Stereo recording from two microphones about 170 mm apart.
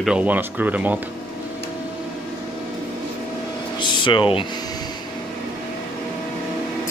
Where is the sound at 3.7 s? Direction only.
25° left (ahead or behind).